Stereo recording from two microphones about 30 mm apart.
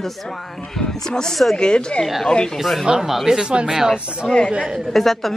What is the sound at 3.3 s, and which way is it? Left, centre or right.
Speech, right.